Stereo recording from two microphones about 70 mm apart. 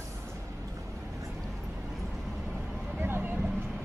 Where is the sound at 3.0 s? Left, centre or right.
Right.